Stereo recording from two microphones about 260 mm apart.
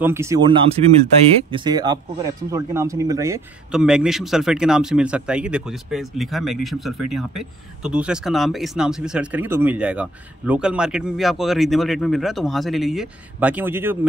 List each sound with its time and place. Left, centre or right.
0.0 s a man's voice: centre